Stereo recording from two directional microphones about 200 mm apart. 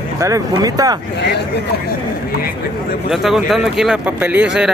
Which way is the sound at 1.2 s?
55° left (ahead or behind).